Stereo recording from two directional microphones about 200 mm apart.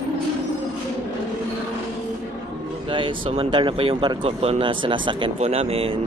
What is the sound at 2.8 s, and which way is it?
Speech, 25° right (ahead or behind).